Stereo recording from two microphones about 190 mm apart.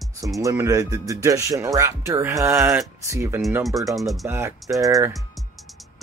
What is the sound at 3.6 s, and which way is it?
Speech, centre (ahead or behind).